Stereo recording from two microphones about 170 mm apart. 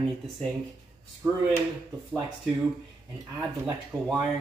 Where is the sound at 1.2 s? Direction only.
20° right (ahead or behind).